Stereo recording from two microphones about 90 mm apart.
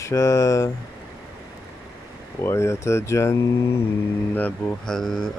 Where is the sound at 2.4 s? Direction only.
30° left (ahead or behind).